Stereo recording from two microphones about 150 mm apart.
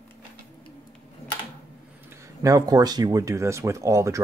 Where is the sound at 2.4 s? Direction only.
20° right (ahead or behind).